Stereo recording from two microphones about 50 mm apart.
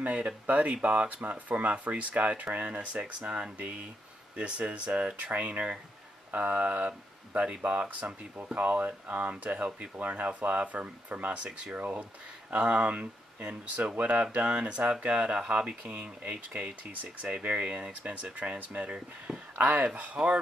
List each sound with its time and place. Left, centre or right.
0.0 s speech: right
5.3 s speech: right
18.8 s speech: right
19.5 s speech: right